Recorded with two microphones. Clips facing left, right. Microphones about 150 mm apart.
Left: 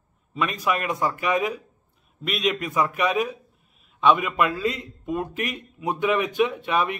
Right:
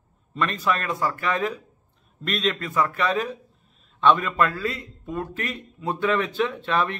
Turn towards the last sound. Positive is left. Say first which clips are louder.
# left 1 dB
turn(degrees=15)  # may be behind; listen again after turning